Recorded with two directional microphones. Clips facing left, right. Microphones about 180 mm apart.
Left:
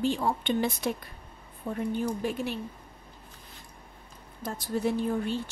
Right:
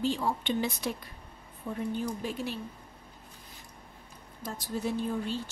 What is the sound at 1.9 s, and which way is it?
Speech, 60° left (ahead or behind).